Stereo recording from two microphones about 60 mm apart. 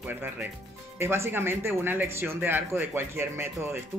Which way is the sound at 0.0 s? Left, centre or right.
Right.